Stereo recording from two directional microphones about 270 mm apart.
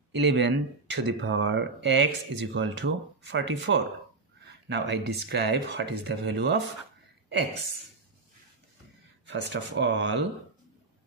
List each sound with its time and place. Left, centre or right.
0.1 s speech: right
9.2 s speech: right